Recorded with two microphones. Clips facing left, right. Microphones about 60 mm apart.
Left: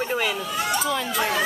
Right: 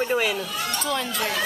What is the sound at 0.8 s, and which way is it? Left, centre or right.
Speech, centre.